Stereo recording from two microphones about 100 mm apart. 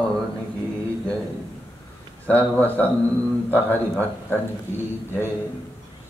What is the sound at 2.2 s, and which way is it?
Mantra, 15° left (ahead or behind).